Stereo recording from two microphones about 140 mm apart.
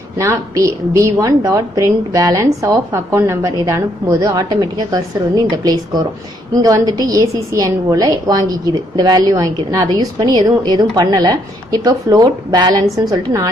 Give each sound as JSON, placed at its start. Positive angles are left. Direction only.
{"t": 0.2, "sound": "a woman's voice", "side_deg": -20}